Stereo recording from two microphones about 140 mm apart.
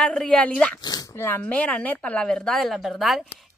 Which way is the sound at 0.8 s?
30° left (ahead or behind).